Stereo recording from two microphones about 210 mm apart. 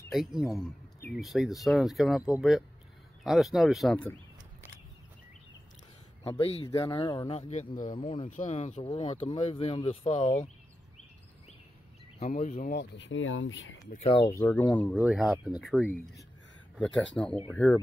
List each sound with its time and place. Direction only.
0.1 s speech: centre (ahead or behind)
6.2 s speech: 25° left (ahead or behind)
7.3 s speech: 35° left (ahead or behind)
7.9 s speech: 25° left (ahead or behind)
8.8 s speech: 25° left (ahead or behind)
12.2 s speech: 35° left (ahead or behind)
12.7 s speech: 60° left (ahead or behind)
14.0 s speech: 25° left (ahead or behind)
14.4 s speech: 10° left (ahead or behind)